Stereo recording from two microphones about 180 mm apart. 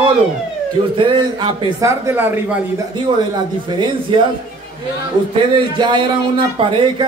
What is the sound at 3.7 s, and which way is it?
Speech, 25° right (ahead or behind).